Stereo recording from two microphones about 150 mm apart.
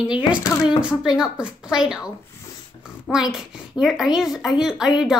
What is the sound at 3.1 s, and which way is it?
A child's voice, 5° right (ahead or behind).